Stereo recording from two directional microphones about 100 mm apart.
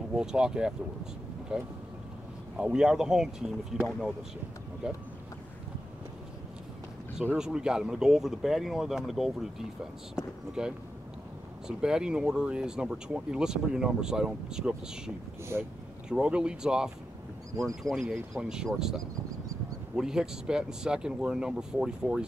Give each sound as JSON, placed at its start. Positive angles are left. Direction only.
{"t": 0.1, "sound": "speech", "side_deg": -5}
{"t": 4.8, "sound": "speech", "side_deg": -10}
{"t": 7.3, "sound": "speech", "side_deg": -5}
{"t": 15.5, "sound": "speech", "side_deg": -25}
{"t": 16.1, "sound": "speech", "side_deg": -10}
{"t": 20.0, "sound": "speech", "side_deg": -5}